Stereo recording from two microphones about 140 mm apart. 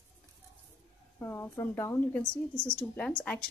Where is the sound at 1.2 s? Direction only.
20° left (ahead or behind).